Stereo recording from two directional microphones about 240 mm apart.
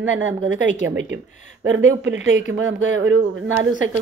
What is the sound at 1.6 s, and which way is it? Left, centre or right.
A woman's voice, right.